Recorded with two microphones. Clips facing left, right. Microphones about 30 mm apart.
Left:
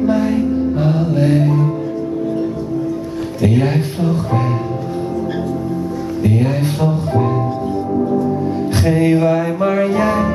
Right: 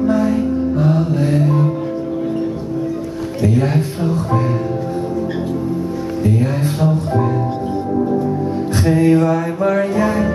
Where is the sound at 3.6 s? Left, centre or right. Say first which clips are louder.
Left 1 dB; centre.